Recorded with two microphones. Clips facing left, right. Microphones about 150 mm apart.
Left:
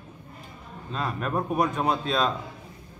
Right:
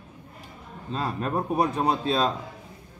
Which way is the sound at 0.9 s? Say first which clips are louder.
Right 1 dB; 30° right (ahead or behind).